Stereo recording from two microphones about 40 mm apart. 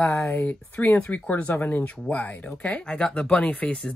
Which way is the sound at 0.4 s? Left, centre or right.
Left.